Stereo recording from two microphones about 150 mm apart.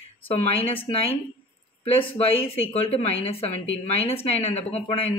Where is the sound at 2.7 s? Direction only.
40° left (ahead or behind).